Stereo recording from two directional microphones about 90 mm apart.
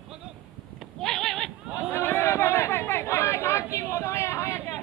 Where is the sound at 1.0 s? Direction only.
5° left (ahead or behind).